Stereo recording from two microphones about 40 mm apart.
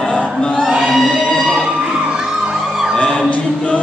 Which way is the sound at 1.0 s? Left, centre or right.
Left.